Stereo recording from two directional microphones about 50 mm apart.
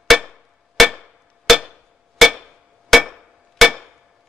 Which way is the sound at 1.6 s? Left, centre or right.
Centre.